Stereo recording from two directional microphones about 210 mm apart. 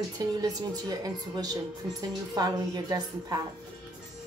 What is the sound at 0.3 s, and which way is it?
A woman's voice, 20° right (ahead or behind).